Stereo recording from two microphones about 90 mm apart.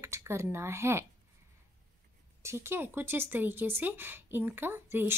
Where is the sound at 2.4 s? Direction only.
30° right (ahead or behind).